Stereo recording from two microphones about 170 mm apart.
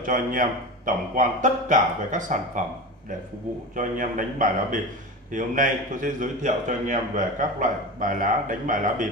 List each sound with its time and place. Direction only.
0.0 s a man's voice: 55° right (ahead or behind)
3.7 s a man's voice: 50° right (ahead or behind)